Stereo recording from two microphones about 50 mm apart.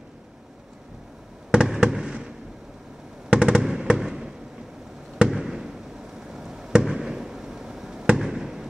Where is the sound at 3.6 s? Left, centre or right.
Centre.